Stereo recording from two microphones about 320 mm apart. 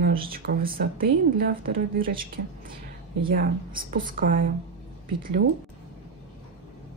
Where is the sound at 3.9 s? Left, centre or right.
Right.